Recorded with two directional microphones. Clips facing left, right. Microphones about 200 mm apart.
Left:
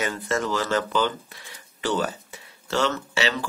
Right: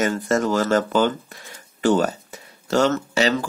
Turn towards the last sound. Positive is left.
turn(degrees=-45)  # may be behind; listen again after turning